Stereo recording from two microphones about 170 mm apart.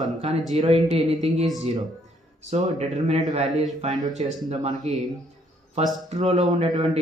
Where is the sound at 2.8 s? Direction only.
45° right (ahead or behind).